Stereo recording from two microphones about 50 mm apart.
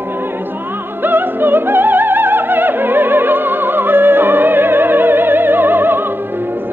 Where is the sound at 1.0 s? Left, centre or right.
Right.